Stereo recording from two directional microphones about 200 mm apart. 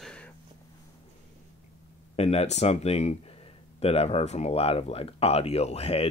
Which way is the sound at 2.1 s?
30° left (ahead or behind).